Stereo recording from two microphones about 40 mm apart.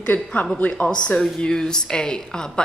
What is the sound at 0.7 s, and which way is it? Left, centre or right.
A woman's voice, left.